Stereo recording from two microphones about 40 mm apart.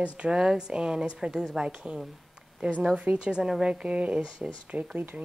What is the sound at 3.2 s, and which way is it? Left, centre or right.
Speech, right.